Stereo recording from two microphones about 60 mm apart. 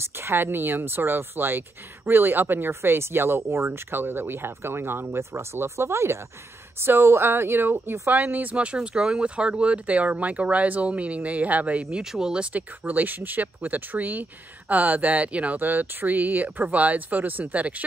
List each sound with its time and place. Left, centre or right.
0.0 s speech: right
8.1 s speech: right
12.0 s speech: centre
12.5 s speech: right